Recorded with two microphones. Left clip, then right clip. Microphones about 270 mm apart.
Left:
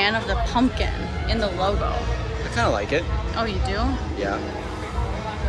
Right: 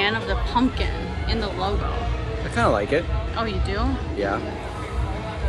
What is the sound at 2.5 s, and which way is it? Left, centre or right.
Speech, right.